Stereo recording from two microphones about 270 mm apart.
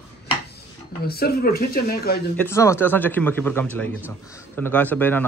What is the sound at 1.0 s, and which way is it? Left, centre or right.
Speech, left.